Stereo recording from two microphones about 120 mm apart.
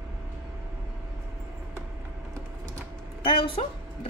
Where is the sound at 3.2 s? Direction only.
50° left (ahead or behind).